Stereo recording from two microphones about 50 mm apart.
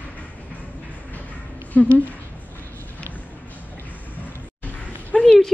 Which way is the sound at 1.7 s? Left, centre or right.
Left.